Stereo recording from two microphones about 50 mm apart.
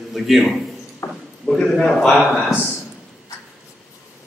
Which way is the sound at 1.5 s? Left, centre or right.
Centre.